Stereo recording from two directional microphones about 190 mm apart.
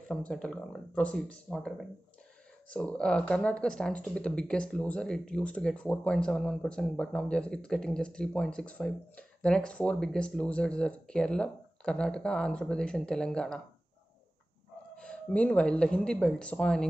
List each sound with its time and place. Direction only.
0.1 s speech: 5° left (ahead or behind)
15.0 s speech: 5° left (ahead or behind)